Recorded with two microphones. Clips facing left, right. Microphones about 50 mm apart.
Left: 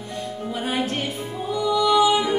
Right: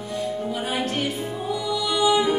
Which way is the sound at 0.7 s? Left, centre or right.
Centre.